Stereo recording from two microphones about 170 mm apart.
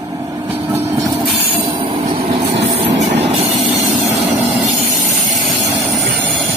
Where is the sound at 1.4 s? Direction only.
30° right (ahead or behind).